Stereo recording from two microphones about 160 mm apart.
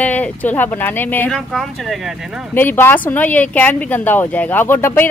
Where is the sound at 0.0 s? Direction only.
10° left (ahead or behind).